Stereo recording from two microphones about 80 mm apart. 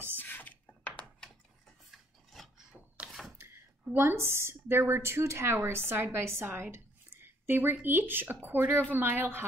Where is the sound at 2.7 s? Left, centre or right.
Centre.